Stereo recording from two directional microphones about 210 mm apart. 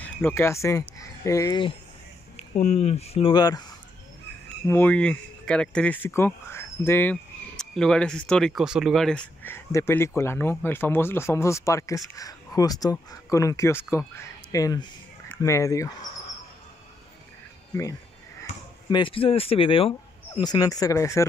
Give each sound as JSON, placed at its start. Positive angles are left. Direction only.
{"t": 0.0, "sound": "speech", "side_deg": 10}
{"t": 2.3, "sound": "speech", "side_deg": 30}
{"t": 4.6, "sound": "speech", "side_deg": 10}
{"t": 18.4, "sound": "speech", "side_deg": 20}